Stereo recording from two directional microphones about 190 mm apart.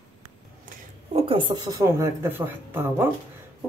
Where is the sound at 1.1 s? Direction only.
30° right (ahead or behind).